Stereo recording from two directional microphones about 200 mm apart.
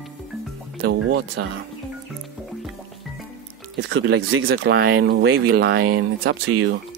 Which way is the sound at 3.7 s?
70° right (ahead or behind).